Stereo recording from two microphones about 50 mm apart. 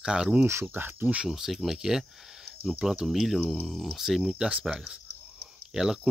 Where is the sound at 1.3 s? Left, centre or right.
Centre.